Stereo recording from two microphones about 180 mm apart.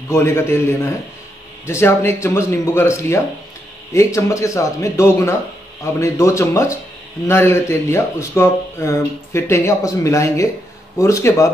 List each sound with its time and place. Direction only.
0.1 s speech: 15° left (ahead or behind)